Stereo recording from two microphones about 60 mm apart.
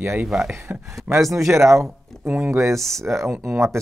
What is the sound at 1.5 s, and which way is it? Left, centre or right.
Speech, right.